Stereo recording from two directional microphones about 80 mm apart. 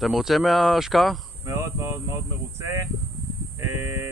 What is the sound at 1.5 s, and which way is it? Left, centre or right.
Speech, right.